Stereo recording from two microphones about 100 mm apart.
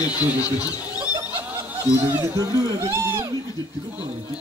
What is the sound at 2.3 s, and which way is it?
Speech, 35° right (ahead or behind).